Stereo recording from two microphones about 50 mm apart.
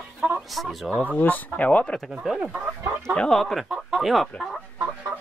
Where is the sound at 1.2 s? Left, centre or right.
Left.